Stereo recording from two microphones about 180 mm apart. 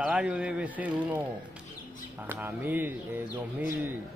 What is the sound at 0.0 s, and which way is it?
Speech, 5° right (ahead or behind).